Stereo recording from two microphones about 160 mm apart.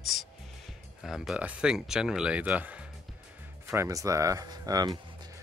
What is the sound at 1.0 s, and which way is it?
Speech, centre (ahead or behind).